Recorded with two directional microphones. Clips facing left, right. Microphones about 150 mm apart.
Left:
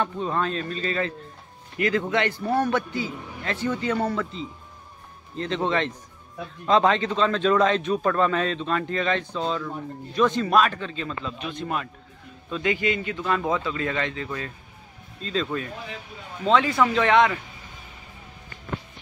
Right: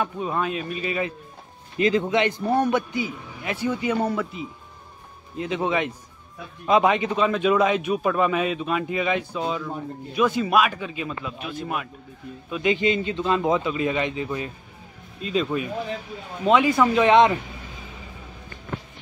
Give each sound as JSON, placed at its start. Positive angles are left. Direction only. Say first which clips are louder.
{"t": 0.0, "sound": "a man's voice", "louder": "even", "side_deg": -10}
{"t": 12.7, "sound": "a man's voice", "louder": "right 3 dB", "side_deg": -20}